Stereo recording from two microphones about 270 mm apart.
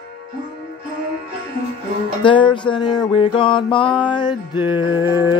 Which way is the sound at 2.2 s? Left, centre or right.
Centre.